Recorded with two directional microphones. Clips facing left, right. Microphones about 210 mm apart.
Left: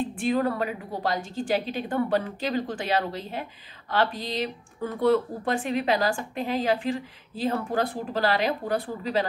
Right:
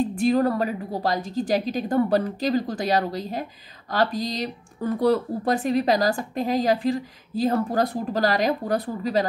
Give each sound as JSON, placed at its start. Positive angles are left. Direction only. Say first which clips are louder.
{"t": 0.0, "sound": "speech", "louder": "right 4 dB", "side_deg": -40}